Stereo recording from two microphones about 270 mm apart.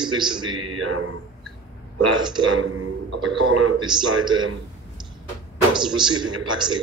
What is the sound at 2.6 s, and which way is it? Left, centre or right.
A man's voice, right.